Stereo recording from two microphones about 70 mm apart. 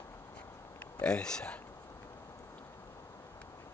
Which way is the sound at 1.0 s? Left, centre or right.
Centre.